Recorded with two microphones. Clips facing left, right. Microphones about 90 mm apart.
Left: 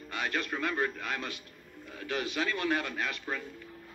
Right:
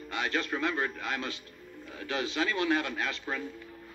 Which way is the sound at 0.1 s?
20° right (ahead or behind).